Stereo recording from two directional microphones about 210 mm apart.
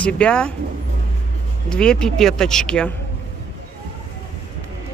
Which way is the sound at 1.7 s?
5° left (ahead or behind).